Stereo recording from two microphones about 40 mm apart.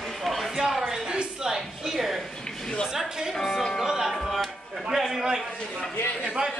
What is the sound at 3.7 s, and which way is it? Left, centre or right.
Music, centre.